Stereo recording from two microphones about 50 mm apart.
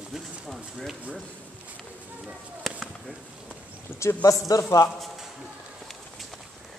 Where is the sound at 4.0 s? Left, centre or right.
Left.